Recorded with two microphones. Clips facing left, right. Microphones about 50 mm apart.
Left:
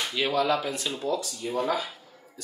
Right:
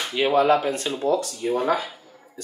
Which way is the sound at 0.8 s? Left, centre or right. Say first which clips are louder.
Right 6 dB; centre.